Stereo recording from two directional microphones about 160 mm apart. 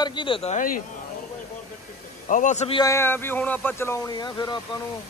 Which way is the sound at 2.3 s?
50° left (ahead or behind).